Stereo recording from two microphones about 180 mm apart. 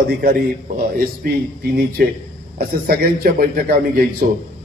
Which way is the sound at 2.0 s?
60° right (ahead or behind).